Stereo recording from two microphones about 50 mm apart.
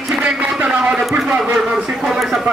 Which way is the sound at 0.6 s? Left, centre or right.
Right.